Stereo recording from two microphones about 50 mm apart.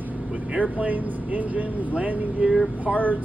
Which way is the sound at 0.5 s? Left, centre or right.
Right.